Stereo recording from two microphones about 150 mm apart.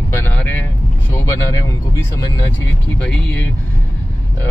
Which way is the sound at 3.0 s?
10° left (ahead or behind).